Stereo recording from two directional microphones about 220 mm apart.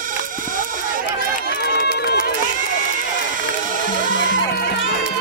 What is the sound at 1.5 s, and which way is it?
Run, 45° left (ahead or behind).